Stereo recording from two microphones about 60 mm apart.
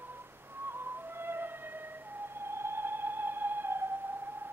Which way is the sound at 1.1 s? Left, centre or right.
Right.